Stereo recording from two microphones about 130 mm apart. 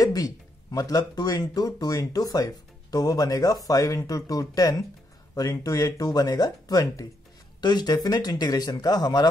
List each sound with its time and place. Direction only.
0.0 s speech: 30° left (ahead or behind)